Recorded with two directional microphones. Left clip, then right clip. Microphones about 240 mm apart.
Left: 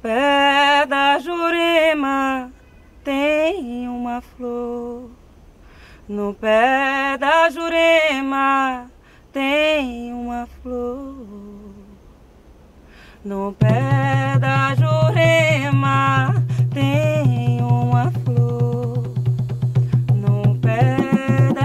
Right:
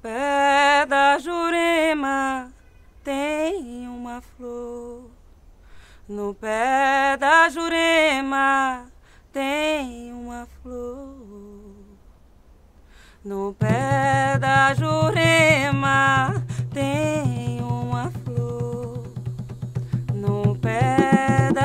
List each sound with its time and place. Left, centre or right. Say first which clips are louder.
0.0 s a sound: left 5 dB; right
3.7 s mantra: left 9 dB; right
6.1 s mantra: left 8 dB; centre
9.3 s a sound: left 6 dB; centre
10.0 s mantra: left 9 dB; right
13.0 s music: left 2 dB; right
17.6 s music: left 8 dB; right
19.0 s music: left 9 dB; centre
20.6 s music: even; centre